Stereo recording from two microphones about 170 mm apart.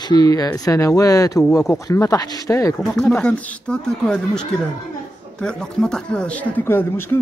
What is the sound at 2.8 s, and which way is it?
Speech, 5° left (ahead or behind).